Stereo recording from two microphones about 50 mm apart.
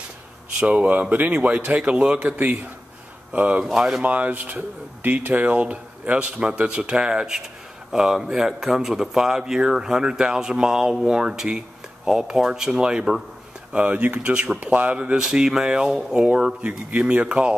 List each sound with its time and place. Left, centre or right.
0.6 s speech: right
3.7 s speech: centre
4.0 s speech: right; by 13.2 s centre
13.7 s speech: right
14.3 s speech: centre
16.6 s speech: right